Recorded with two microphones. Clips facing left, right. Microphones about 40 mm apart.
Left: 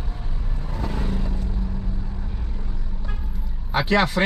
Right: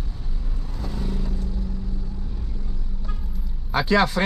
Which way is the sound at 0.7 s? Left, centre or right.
Left.